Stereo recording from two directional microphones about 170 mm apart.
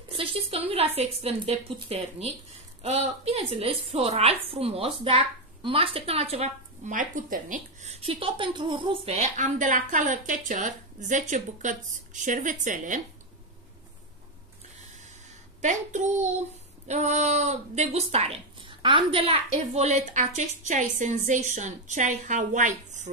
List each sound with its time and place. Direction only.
0.1 s a woman's voice: 35° right (ahead or behind); by 13.0 s 50° right (ahead or behind)
15.6 s a woman's voice: 45° right (ahead or behind)